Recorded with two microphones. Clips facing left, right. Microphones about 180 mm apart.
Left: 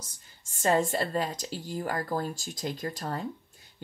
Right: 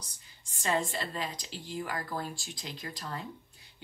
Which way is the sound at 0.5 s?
45° left (ahead or behind).